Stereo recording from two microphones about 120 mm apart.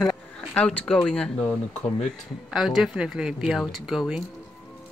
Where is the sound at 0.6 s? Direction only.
5° left (ahead or behind).